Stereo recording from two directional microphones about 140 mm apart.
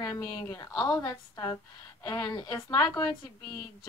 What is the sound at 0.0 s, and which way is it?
Speech, 25° left (ahead or behind).